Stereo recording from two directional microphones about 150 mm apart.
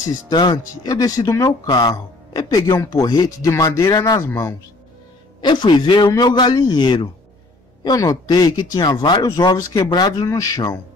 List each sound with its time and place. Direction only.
0.1 s speech: 30° left (ahead or behind)
5.4 s speech: 30° left (ahead or behind)